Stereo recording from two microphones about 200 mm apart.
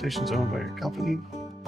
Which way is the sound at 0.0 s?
Centre (ahead or behind).